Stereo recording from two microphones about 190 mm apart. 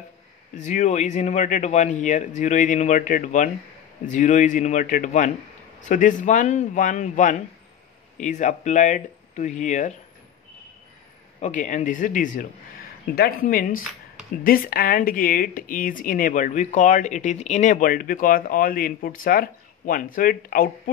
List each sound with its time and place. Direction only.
0.7 s speech: 40° left (ahead or behind)
11.4 s speech: 40° left (ahead or behind)